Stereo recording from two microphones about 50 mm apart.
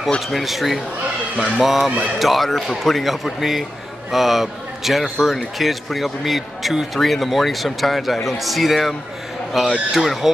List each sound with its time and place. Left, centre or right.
0.3 s speech: centre